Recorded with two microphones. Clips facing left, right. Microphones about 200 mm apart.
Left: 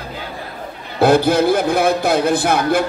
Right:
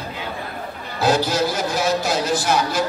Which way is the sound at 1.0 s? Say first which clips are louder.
Left 6 dB; 55° left (ahead or behind).